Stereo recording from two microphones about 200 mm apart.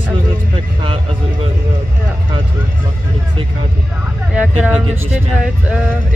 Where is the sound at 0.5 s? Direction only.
25° right (ahead or behind).